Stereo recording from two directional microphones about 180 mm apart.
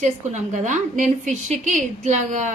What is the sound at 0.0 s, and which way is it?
A woman's voice, 40° right (ahead or behind).